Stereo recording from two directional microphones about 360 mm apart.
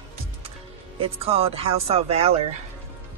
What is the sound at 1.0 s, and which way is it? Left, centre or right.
Speech, centre.